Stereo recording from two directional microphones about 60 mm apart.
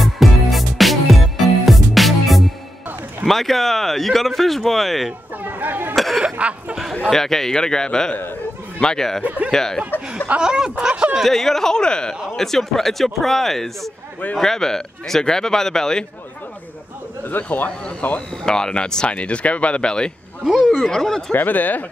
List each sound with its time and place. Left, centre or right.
0.0 s music: centre
3.3 s speech: centre
5.4 s speech: right
5.9 s speech: centre
6.2 s speech: centre
7.0 s a man's voice: centre
10.2 s speech: centre
11.1 s a man's voice: centre
17.3 s speech: left
18.4 s a man's voice: centre
20.4 s speech: centre
20.9 s a man's voice: centre
21.3 s speech: left